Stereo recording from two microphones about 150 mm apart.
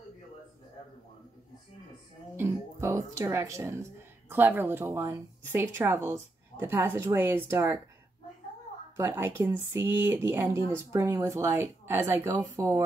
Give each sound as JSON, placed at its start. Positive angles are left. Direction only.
{"t": 2.3, "sound": "speech", "side_deg": -20}
{"t": 8.9, "sound": "speech", "side_deg": -15}